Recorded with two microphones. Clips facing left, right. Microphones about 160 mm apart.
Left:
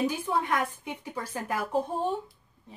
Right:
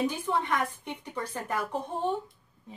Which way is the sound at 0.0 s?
5° left (ahead or behind).